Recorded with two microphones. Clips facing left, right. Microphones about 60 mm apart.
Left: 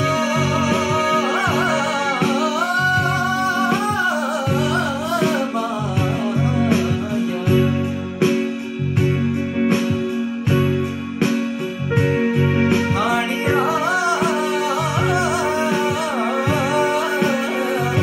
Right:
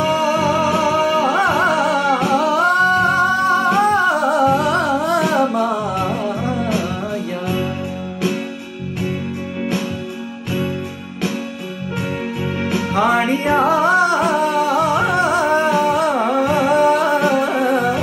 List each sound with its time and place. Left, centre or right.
0.1 s music: right
2.3 s music: right
12.0 s music: left
13.7 s music: right